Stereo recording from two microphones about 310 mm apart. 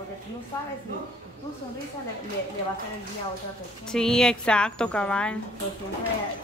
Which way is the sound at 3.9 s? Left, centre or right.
Centre.